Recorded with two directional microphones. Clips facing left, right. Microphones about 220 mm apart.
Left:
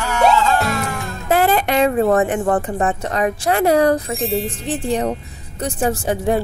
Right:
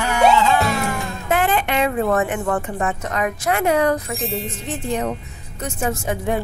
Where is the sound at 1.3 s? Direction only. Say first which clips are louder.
Left 4 dB; 40° left (ahead or behind).